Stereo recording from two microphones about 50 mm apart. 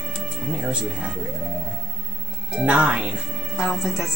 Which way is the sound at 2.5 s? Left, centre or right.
Right.